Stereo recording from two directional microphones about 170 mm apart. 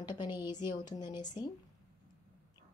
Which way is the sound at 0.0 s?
25° left (ahead or behind).